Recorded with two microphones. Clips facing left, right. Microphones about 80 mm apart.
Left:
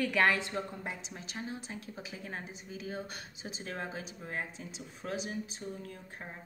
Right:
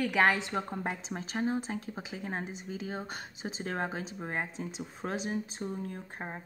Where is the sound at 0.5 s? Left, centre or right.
Right.